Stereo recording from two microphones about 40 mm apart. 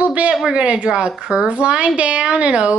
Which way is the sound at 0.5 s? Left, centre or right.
Right.